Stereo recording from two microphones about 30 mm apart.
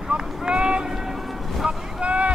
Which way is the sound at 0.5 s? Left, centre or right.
Right.